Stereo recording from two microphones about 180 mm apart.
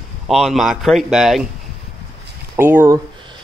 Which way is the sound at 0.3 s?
Centre (ahead or behind).